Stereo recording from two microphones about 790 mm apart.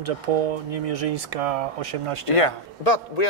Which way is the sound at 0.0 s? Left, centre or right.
Right.